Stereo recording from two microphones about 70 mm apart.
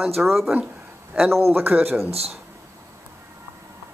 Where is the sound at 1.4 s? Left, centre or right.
Right.